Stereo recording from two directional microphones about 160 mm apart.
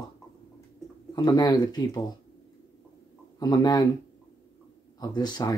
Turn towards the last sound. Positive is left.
turn(degrees=25)  # may be behind; listen again after turning